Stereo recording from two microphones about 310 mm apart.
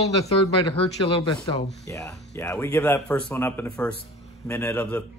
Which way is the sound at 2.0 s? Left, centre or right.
Centre.